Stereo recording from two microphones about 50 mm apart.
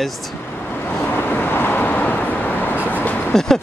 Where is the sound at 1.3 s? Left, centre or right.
Left.